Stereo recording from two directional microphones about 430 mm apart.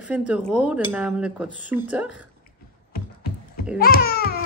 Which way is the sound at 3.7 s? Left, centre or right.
Left.